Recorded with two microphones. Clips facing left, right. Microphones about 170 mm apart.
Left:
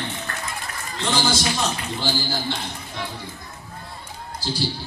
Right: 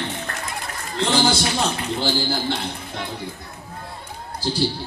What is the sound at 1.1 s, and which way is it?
A man's voice, 60° right (ahead or behind).